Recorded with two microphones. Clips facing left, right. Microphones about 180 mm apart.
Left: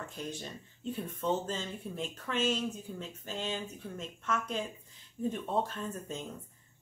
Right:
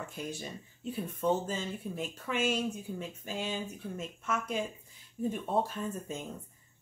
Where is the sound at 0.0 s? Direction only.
10° right (ahead or behind).